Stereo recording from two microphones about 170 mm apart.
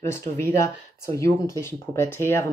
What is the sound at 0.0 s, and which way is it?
Speech, 15° left (ahead or behind).